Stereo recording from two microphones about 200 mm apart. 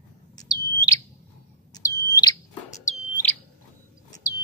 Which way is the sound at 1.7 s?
20° left (ahead or behind).